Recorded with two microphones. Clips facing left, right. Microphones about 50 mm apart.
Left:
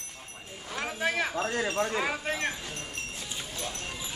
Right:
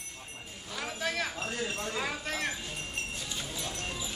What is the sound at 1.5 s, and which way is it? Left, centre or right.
Wind chime, left.